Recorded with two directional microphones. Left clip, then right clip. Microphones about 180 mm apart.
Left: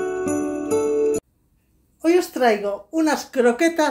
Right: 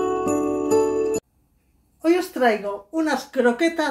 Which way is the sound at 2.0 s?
20° left (ahead or behind).